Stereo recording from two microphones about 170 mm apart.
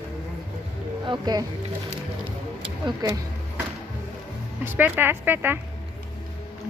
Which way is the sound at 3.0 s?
15° right (ahead or behind).